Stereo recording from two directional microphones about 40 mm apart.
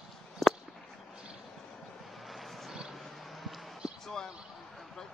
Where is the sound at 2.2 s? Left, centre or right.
Centre.